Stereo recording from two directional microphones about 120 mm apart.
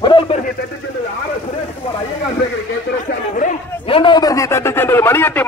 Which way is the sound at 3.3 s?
90° left.